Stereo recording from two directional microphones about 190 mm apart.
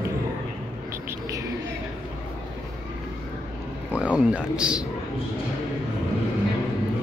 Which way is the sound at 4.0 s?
5° right (ahead or behind).